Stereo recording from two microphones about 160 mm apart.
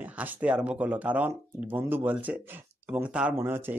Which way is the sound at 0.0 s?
10° right (ahead or behind).